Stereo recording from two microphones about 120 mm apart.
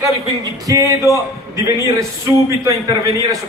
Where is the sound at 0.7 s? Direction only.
25° right (ahead or behind).